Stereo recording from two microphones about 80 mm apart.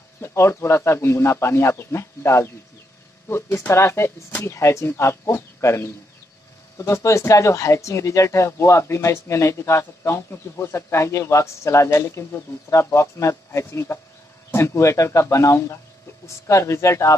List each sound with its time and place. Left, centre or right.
0.2 s speech: left